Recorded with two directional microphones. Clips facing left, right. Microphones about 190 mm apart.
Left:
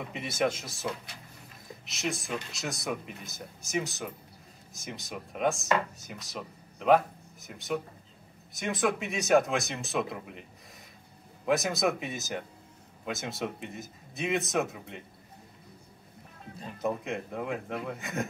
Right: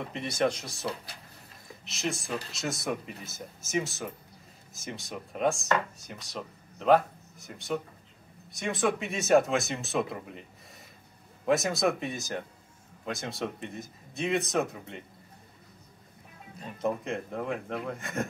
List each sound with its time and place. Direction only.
0.0 s speech: 5° left (ahead or behind)
11.4 s speech: centre (ahead or behind)
16.7 s speech: centre (ahead or behind)